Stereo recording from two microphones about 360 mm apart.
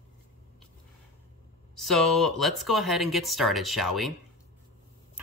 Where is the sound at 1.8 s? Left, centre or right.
Centre.